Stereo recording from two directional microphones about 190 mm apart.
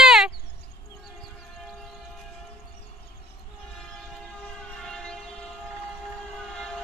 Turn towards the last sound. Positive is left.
turn(degrees=5)  # may be behind; listen again after turning